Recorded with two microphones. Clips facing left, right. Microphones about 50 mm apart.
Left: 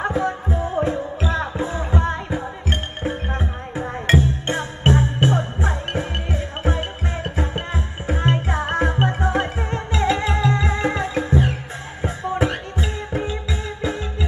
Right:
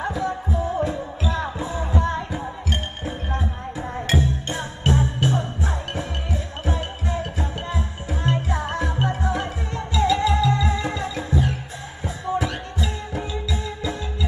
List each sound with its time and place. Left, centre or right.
0.0 s music: left